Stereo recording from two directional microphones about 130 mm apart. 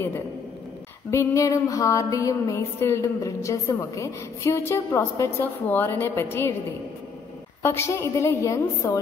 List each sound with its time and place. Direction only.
1.1 s music: 25° left (ahead or behind)
7.6 s music: 20° left (ahead or behind)